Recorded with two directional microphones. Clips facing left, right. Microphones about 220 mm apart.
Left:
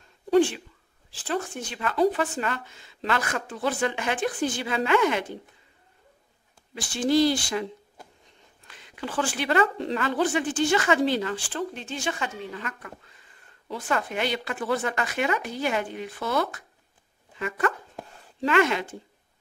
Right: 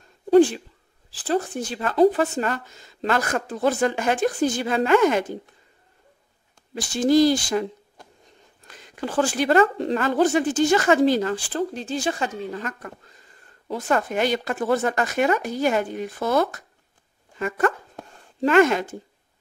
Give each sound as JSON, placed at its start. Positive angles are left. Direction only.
{"t": 0.3, "sound": "a woman's voice", "side_deg": -40}
{"t": 6.7, "sound": "speech", "side_deg": -40}
{"t": 8.6, "sound": "a woman's voice", "side_deg": -40}